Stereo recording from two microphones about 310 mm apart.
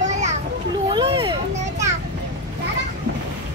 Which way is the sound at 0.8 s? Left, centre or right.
Centre.